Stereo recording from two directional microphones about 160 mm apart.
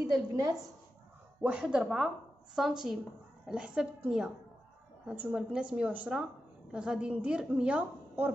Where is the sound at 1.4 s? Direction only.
5° right (ahead or behind).